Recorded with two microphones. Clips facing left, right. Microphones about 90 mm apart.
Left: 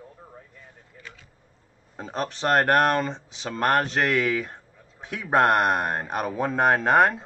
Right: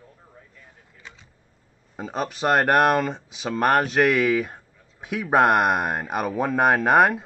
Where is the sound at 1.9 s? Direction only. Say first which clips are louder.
Right 2 dB; 5° right (ahead or behind).